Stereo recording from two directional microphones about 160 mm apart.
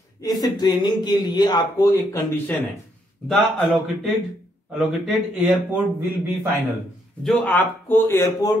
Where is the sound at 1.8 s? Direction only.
15° left (ahead or behind).